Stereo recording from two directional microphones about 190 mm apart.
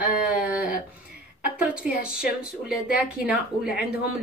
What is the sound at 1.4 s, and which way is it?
A woman's voice, 5° right (ahead or behind).